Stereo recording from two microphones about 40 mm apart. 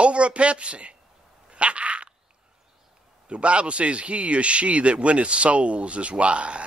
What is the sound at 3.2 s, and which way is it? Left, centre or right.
A man's voice, right.